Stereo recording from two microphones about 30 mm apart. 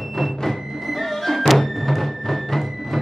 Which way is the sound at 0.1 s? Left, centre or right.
Centre.